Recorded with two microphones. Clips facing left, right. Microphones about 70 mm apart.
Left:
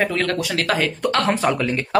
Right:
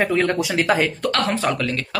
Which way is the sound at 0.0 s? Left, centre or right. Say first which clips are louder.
Right 2 dB; centre.